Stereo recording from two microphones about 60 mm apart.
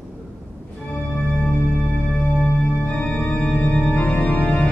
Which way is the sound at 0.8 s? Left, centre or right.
Centre.